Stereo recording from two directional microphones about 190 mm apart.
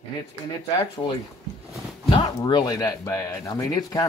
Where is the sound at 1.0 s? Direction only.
20° left (ahead or behind).